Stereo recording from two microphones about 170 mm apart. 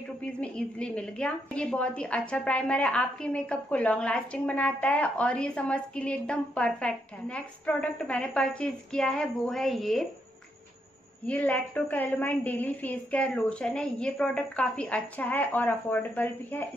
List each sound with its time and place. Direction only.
0.2 s a woman's voice: 5° left (ahead or behind)
11.2 s a woman's voice: 10° left (ahead or behind)